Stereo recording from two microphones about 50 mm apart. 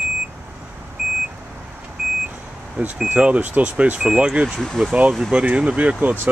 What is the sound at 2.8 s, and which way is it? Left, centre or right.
Speech, right.